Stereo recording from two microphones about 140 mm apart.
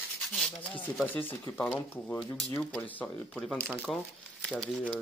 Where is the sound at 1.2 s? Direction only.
15° left (ahead or behind).